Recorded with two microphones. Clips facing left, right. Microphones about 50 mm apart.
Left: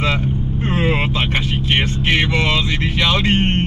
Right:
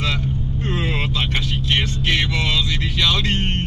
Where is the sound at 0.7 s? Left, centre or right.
Left.